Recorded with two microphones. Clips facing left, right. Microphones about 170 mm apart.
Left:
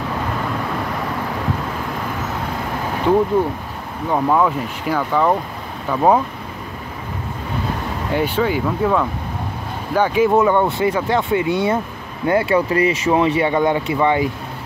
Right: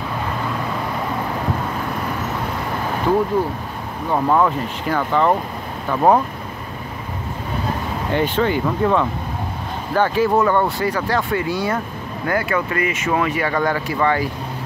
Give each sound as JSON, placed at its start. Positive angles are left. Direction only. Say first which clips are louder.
{"t": 4.1, "sound": "speech", "louder": "even", "side_deg": 0}
{"t": 8.1, "sound": "speech", "louder": "even", "side_deg": 5}
{"t": 9.9, "sound": "speech", "louder": "left 2 dB", "side_deg": 15}